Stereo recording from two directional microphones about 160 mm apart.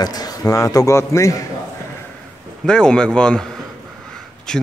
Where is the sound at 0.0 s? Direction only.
25° left (ahead or behind).